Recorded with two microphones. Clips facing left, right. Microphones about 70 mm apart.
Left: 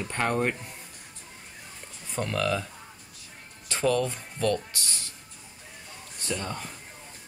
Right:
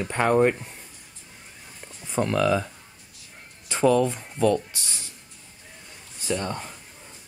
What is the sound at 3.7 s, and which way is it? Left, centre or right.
Speech, centre.